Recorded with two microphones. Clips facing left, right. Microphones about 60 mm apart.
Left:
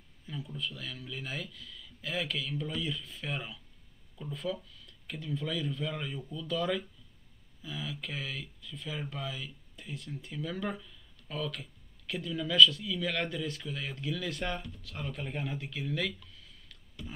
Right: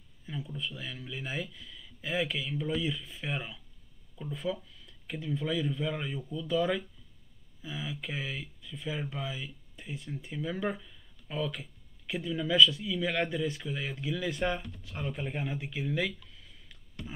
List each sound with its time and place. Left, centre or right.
0.6 s speech: centre
3.3 s speech: centre